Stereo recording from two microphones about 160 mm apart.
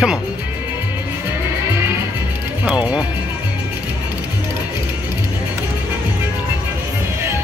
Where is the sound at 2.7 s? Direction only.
5° right (ahead or behind).